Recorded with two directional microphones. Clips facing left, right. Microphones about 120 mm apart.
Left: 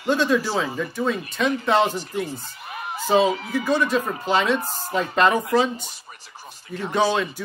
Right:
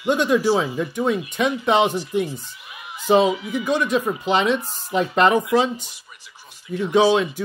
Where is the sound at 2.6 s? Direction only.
50° left (ahead or behind).